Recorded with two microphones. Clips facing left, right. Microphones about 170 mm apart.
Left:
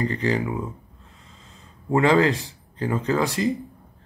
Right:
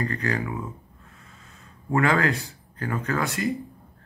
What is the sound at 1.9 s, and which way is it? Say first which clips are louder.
Speech: left 4 dB; 20° left (ahead or behind).